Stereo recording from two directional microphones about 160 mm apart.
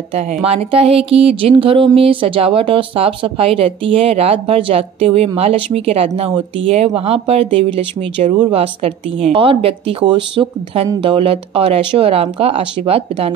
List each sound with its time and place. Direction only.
0.5 s speech: 40° right (ahead or behind)